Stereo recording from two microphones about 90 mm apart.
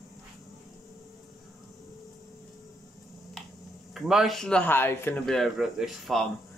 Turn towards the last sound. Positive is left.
turn(degrees=0)  # may be behind; listen again after turning